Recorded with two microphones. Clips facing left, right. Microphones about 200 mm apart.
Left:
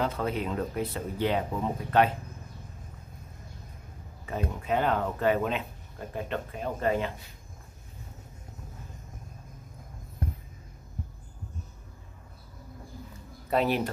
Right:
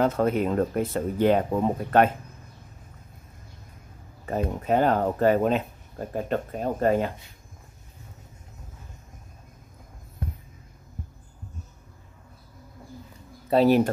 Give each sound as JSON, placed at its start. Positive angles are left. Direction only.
{"t": 0.0, "sound": "speech", "side_deg": -50}
{"t": 4.3, "sound": "speech", "side_deg": -40}
{"t": 13.5, "sound": "speech", "side_deg": -35}